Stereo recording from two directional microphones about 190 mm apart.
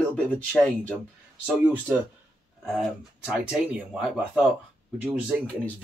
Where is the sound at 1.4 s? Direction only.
5° right (ahead or behind).